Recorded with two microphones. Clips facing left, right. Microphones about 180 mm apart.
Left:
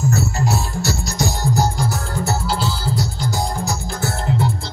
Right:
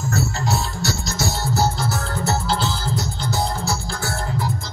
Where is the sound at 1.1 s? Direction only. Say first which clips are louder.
Left 4 dB; 15° left (ahead or behind).